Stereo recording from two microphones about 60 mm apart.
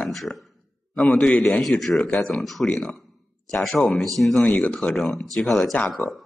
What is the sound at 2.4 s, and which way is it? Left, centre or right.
Speech, centre.